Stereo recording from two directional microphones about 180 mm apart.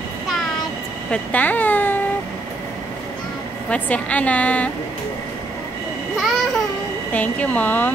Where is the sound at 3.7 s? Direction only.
5° left (ahead or behind).